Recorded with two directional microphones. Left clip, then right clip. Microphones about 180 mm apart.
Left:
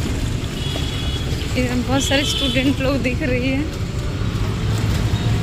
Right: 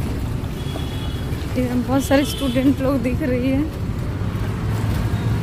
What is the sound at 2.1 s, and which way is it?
Speech, 30° right (ahead or behind).